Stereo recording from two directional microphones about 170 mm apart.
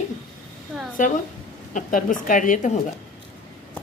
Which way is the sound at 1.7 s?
50° left (ahead or behind).